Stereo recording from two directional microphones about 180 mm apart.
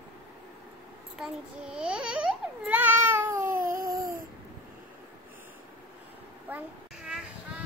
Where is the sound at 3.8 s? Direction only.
15° right (ahead or behind).